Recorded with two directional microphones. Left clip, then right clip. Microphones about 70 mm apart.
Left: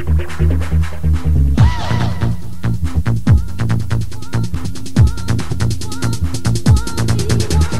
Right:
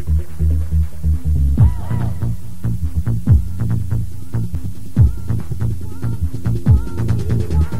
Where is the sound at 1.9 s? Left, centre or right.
Centre.